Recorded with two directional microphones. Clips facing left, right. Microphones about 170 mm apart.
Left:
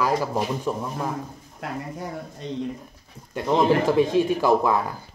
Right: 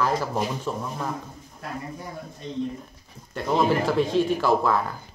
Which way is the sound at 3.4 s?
15° left (ahead or behind).